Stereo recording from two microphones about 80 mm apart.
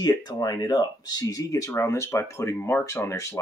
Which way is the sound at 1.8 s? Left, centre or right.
Left.